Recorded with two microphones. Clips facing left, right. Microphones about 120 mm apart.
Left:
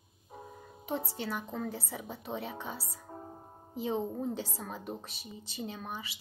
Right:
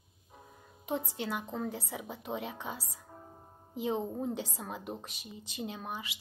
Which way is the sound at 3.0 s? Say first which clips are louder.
Left 5 dB; 35° left (ahead or behind).